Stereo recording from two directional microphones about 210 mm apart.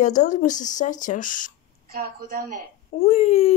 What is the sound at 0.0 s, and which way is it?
Speech, 35° left (ahead or behind).